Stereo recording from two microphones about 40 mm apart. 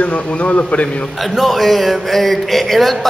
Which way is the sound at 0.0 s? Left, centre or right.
Left.